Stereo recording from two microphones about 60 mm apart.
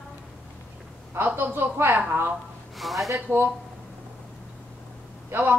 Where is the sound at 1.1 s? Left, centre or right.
Right.